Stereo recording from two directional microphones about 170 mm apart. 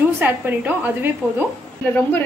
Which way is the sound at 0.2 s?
10° right (ahead or behind).